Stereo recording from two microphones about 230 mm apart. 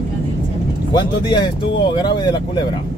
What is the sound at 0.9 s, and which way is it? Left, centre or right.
Speech, centre.